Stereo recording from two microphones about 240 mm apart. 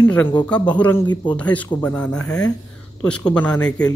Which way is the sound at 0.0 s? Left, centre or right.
Centre.